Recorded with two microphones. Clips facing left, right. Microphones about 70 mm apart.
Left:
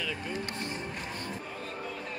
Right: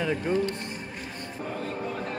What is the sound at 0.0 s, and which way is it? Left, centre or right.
Speech, right.